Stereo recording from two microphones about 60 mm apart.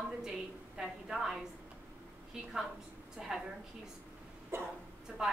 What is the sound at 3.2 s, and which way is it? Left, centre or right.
Speech, centre.